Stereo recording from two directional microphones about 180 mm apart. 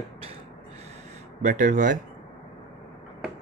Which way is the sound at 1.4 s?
45° right (ahead or behind).